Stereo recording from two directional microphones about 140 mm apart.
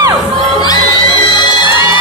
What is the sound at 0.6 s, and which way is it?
Music, 30° left (ahead or behind).